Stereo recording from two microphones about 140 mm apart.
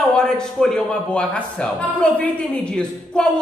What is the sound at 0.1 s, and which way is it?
A man's voice, 5° left (ahead or behind).